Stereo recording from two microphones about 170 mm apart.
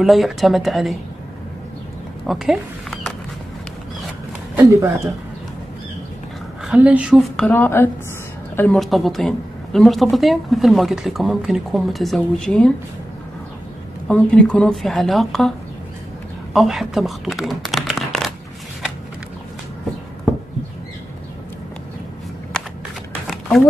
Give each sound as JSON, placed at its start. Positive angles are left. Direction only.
{"t": 0.0, "sound": "speech", "side_deg": 0}
{"t": 2.2, "sound": "a sound", "side_deg": 0}
{"t": 4.6, "sound": "speech", "side_deg": -20}
{"t": 6.6, "sound": "speech", "side_deg": -5}
{"t": 14.0, "sound": "speech", "side_deg": 5}
{"t": 16.5, "sound": "speech", "side_deg": 0}
{"t": 22.5, "sound": "a sound", "side_deg": 5}